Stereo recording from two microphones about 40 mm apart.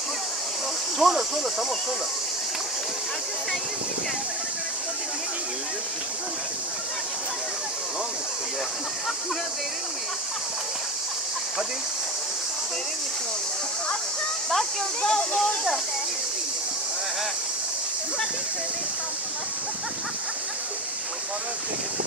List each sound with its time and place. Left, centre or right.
0.9 s cricket: centre
15.0 s speech: centre